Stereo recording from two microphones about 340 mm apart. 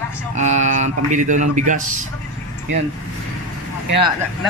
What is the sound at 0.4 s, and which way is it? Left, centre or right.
Speech, right.